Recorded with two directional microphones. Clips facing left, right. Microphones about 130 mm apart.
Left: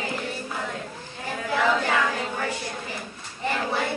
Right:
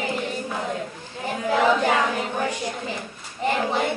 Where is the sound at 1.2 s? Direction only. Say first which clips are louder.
Right 4 dB; 20° right (ahead or behind).